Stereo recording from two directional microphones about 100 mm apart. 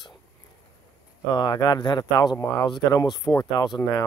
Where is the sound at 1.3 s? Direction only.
50° left (ahead or behind).